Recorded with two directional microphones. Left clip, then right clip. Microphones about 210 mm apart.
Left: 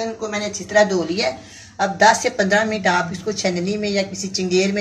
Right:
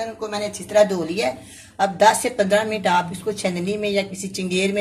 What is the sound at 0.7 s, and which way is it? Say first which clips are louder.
A woman's voice: left 1 dB; 30° right (ahead or behind).